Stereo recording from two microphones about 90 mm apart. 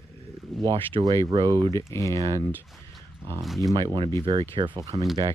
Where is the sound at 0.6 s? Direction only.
70° right (ahead or behind).